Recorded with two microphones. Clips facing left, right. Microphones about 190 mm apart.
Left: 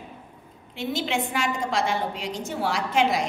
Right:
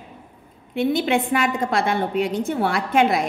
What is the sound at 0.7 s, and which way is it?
A woman's voice, 55° right (ahead or behind).